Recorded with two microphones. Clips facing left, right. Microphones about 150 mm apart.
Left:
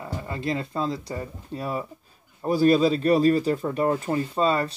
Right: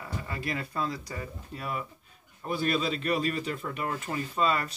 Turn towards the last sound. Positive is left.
turn(degrees=30)  # may be behind; listen again after turning